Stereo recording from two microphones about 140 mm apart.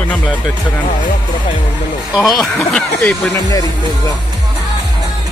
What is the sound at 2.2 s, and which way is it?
Speech, centre (ahead or behind).